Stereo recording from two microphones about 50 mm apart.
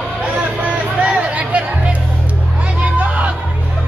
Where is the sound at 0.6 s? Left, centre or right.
Right.